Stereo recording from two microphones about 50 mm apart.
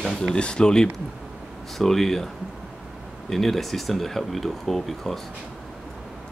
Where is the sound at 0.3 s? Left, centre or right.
Centre.